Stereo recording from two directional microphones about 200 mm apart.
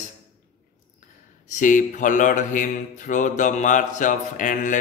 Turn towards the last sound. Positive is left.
turn(degrees=40)  # may be behind; listen again after turning